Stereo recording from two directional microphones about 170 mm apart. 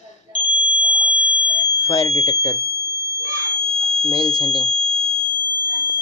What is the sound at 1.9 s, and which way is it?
Speech, 25° left (ahead or behind).